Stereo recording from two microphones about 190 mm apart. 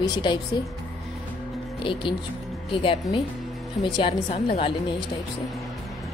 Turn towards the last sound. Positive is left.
turn(degrees=30)  # may be behind; listen again after turning